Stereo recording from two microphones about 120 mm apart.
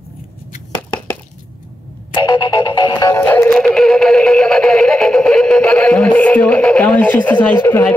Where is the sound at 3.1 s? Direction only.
20° left (ahead or behind).